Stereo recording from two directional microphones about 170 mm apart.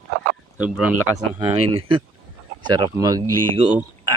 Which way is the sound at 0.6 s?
10° right (ahead or behind).